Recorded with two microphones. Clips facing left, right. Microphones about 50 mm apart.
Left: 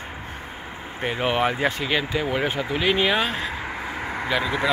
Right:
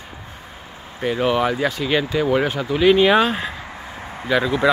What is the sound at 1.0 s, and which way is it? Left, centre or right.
Speech, left.